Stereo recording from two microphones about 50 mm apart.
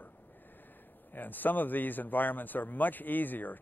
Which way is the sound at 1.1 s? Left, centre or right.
Left.